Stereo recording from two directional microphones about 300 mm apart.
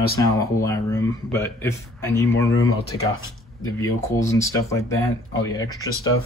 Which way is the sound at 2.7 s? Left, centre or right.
Left.